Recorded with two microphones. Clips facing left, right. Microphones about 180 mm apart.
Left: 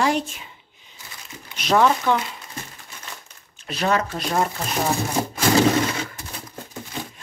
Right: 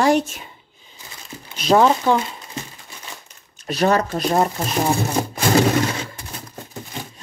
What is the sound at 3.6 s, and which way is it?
Speech, 40° right (ahead or behind).